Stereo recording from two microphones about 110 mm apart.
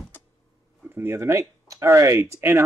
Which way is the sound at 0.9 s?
25° right (ahead or behind).